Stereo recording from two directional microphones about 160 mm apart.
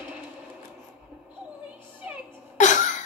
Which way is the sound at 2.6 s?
50° left (ahead or behind).